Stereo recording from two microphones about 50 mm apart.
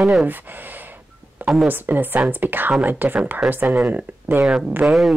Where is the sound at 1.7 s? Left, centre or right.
Right.